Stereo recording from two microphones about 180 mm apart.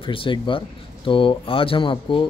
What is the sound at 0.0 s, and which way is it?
Speech, 30° left (ahead or behind).